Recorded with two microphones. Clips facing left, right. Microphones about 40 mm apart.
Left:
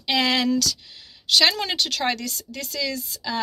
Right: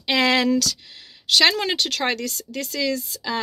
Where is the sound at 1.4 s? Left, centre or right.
Right.